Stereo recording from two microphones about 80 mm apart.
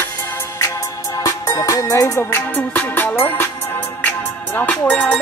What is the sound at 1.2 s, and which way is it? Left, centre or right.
Music, left.